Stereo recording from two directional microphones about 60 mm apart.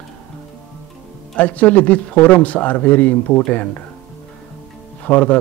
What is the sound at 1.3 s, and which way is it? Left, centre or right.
Speech, left.